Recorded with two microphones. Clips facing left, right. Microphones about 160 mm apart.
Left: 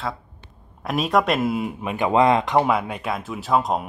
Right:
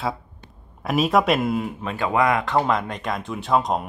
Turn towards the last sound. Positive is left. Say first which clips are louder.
# even
turn(degrees=0)  # may be behind; listen again after turning